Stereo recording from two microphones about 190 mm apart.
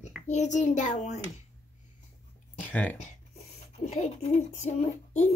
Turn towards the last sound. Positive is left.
turn(degrees=35)  # may be behind; listen again after turning